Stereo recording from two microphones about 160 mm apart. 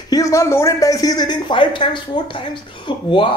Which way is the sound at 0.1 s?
20° left (ahead or behind).